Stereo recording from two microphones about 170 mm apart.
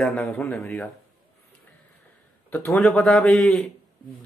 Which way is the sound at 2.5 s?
15° left (ahead or behind).